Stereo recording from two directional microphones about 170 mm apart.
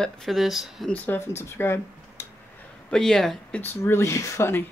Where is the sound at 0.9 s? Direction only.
10° left (ahead or behind).